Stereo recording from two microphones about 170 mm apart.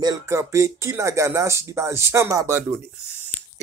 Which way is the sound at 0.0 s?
15° right (ahead or behind).